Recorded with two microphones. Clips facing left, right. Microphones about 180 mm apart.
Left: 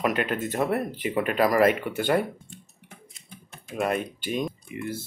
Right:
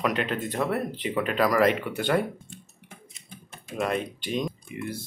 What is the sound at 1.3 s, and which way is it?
Speech, 50° left (ahead or behind).